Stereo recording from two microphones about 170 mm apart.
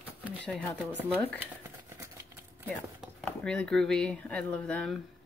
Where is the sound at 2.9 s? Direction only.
5° left (ahead or behind).